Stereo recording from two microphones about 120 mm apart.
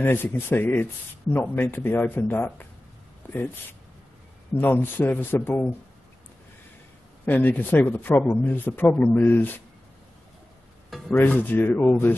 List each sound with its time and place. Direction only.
0.0 s a man's voice: 15° left (ahead or behind)
4.6 s a man's voice: 15° left (ahead or behind)
7.2 s a man's voice: 15° left (ahead or behind)
11.1 s a man's voice: 15° left (ahead or behind)